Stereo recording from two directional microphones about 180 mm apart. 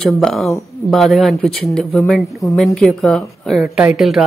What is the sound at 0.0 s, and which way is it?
Speech, centre (ahead or behind).